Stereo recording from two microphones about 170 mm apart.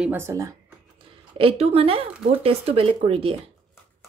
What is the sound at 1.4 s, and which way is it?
Speech, 35° right (ahead or behind).